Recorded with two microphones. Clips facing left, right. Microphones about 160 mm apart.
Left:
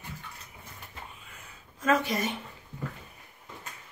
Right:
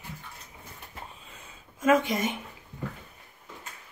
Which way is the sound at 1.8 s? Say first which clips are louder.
Right 3 dB; 20° right (ahead or behind).